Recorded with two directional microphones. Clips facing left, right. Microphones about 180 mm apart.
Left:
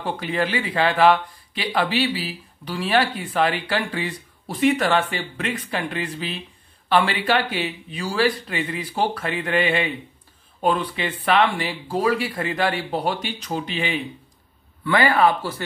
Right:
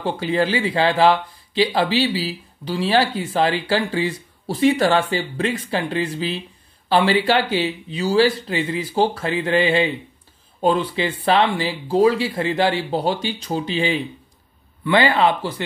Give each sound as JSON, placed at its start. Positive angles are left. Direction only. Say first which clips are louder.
{"t": 0.0, "sound": "speech", "louder": "right 4 dB", "side_deg": -30}